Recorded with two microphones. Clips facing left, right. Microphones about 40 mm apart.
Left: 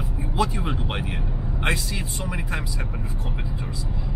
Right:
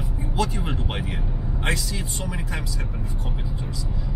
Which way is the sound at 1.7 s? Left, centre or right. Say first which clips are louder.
Left 1 dB; left.